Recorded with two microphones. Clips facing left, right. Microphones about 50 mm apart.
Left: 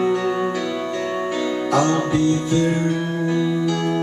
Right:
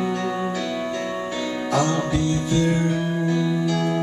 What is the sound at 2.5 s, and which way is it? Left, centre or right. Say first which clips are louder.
Music: left 2 dB; centre.